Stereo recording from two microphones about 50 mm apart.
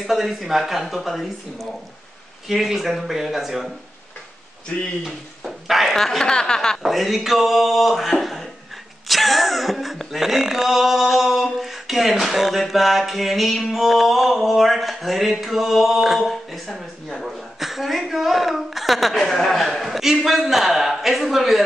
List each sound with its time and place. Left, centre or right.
0.0 s speech: centre
4.7 s speech: centre
5.0 s speech: centre
6.8 s speech: centre